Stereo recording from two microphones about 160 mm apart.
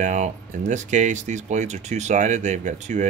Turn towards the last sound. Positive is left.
turn(degrees=-50)  # may be behind; listen again after turning